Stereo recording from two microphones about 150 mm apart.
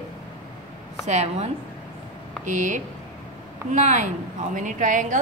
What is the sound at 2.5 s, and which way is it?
A woman's voice, 55° right (ahead or behind).